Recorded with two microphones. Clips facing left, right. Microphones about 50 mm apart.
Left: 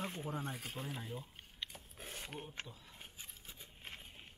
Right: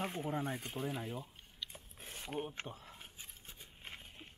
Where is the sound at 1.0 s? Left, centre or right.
Right.